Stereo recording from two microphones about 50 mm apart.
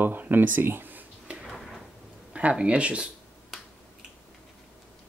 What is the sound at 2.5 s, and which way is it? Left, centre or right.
Speech, right.